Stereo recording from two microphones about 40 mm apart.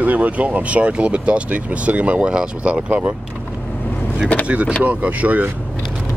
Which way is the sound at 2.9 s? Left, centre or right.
Right.